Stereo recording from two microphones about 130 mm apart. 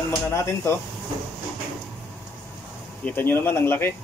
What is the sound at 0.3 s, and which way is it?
Speech, 20° left (ahead or behind).